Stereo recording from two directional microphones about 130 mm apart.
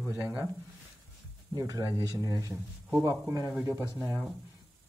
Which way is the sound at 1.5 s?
25° right (ahead or behind).